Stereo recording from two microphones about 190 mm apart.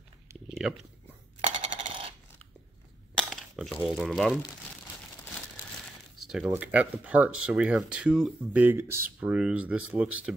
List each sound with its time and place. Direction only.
1.4 s coin: 40° right (ahead or behind)
3.2 s a sound: centre (ahead or behind)
3.8 s speech: 5° right (ahead or behind)
6.1 s speech: centre (ahead or behind)